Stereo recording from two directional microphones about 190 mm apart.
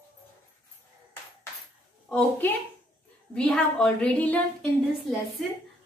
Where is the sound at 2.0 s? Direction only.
5° left (ahead or behind).